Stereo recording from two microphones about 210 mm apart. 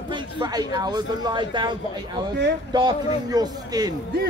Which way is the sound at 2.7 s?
20° right (ahead or behind).